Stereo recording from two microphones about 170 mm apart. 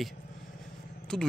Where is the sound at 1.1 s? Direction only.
5° left (ahead or behind).